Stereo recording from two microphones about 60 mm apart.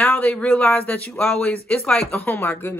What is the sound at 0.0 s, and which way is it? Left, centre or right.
Speech, left.